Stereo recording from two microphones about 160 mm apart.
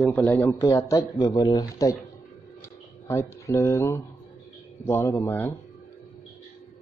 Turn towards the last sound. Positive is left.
turn(degrees=15)  # may be behind; listen again after turning